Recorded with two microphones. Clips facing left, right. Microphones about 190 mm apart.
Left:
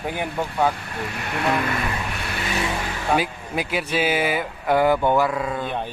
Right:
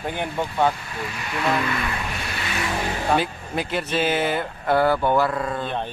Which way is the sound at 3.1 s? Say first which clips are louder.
Left 2 dB; 10° left (ahead or behind).